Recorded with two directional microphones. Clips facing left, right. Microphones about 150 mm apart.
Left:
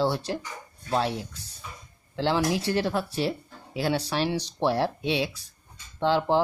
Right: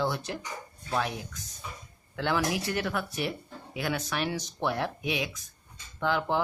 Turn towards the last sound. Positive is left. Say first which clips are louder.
# left 5 dB
turn(degrees=30)  # may be behind; listen again after turning